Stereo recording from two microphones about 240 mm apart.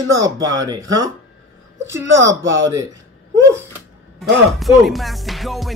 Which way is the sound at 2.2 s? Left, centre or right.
Right.